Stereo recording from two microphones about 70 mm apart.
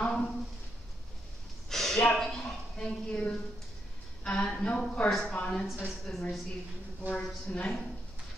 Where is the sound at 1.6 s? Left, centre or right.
Centre.